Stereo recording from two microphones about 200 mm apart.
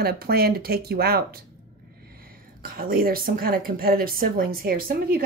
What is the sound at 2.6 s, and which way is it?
A woman's voice, 45° right (ahead or behind).